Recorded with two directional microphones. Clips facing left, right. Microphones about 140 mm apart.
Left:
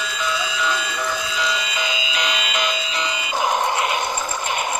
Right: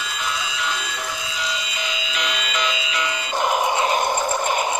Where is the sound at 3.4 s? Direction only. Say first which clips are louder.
Even; centre (ahead or behind).